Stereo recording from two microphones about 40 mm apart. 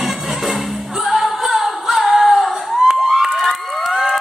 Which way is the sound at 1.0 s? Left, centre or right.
Centre.